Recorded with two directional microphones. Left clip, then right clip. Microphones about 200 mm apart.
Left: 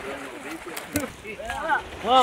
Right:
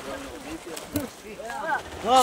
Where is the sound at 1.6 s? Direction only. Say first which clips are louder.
Left 2 dB; 5° right (ahead or behind).